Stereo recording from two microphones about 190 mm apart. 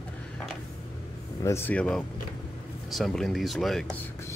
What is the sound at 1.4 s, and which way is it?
Speech, 15° left (ahead or behind).